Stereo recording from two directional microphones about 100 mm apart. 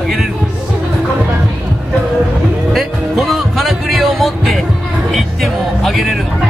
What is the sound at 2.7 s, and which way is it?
Music, centre (ahead or behind).